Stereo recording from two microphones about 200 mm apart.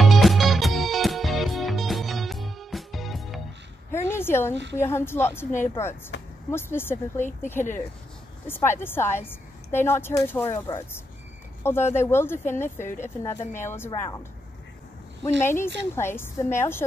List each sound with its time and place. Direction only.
0.0 s music: centre (ahead or behind)
3.9 s a sound: 10° left (ahead or behind)
4.7 s a woman's voice: 10° left (ahead or behind)
15.2 s a woman's voice: 10° left (ahead or behind)